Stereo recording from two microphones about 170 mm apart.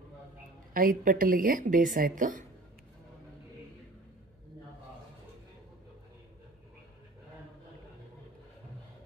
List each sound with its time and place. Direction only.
0.7 s a woman's voice: 55° right (ahead or behind)